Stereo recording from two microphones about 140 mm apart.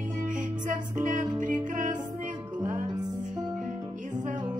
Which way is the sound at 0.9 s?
60° right (ahead or behind).